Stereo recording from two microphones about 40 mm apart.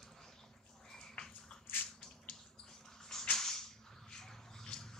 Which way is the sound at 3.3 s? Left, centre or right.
Centre.